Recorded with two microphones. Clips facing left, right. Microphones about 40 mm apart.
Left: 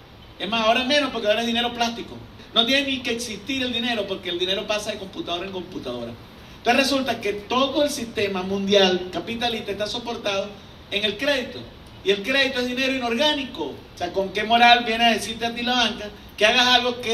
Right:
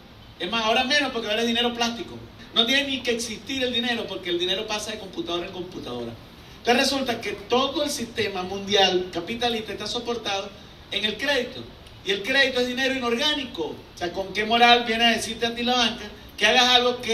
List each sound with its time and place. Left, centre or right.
0.4 s a man's voice: left